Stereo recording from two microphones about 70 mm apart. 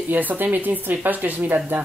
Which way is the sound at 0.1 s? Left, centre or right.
Right.